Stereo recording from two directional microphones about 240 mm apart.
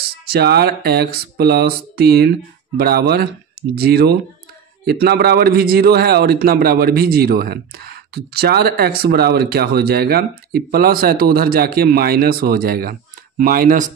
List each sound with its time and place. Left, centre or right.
0.3 s a man's voice: right